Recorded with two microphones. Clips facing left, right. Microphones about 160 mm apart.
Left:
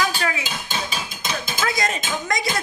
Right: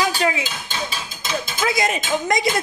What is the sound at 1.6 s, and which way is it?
Dishes, 15° right (ahead or behind).